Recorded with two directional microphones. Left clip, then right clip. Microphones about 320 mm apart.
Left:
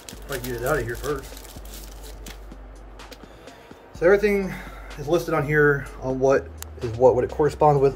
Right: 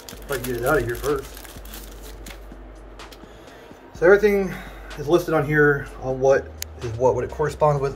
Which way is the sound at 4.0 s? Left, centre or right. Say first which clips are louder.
Right 3 dB; centre.